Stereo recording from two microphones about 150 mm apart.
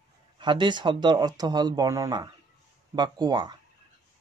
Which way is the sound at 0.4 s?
30° right (ahead or behind).